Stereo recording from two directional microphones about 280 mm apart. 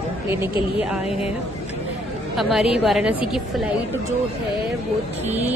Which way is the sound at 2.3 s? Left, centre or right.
Centre.